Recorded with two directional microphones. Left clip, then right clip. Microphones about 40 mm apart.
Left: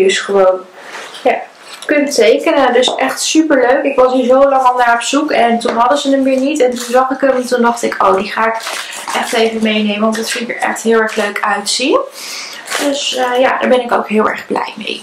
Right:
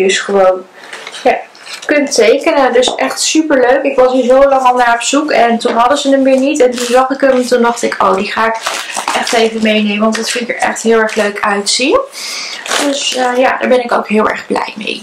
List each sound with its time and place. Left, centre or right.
0.0 s speech: right